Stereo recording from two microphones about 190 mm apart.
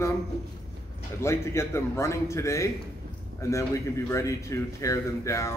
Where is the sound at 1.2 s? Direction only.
15° left (ahead or behind).